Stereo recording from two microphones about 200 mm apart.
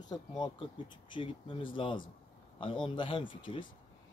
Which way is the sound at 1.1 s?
25° left (ahead or behind).